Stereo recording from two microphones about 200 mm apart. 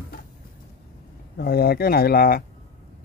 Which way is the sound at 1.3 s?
50° left (ahead or behind).